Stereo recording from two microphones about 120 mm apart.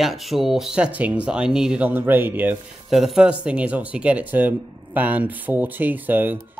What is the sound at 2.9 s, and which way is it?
Speech, centre (ahead or behind).